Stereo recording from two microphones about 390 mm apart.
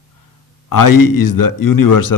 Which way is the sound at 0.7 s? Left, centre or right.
Left.